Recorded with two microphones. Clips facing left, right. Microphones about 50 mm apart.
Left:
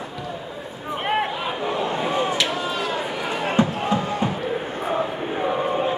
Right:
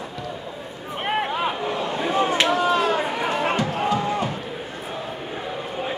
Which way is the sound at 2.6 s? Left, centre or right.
Right.